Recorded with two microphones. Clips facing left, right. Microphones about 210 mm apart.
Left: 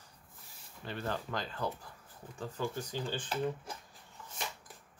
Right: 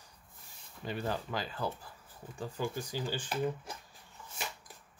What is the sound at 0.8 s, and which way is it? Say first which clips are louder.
Speech: right 2 dB; 10° right (ahead or behind).